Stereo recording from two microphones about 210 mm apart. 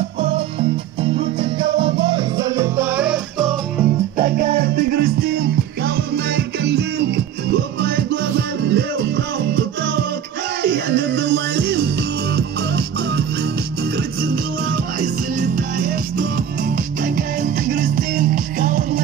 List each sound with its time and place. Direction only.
2.0 s music: 20° right (ahead or behind); by 3.5 s centre (ahead or behind)
4.2 s music: 40° right (ahead or behind)
14.2 s music: 45° right (ahead or behind)
16.7 s music: 40° right (ahead or behind)